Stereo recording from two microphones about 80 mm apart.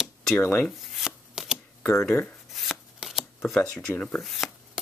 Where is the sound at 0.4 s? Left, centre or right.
Left.